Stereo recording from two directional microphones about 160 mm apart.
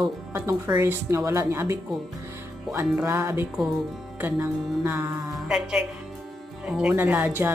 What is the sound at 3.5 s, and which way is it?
Speech, centre (ahead or behind).